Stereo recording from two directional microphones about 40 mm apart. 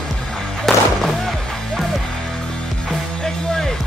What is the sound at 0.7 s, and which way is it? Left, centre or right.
Music, centre.